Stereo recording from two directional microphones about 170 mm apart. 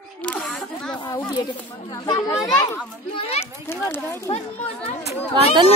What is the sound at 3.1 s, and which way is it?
A child's voice, 35° left (ahead or behind).